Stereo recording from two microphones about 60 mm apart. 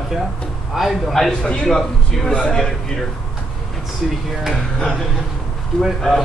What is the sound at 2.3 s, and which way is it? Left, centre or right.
Speech, centre.